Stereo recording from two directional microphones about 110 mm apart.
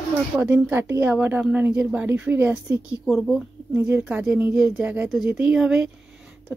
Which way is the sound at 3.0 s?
Centre (ahead or behind).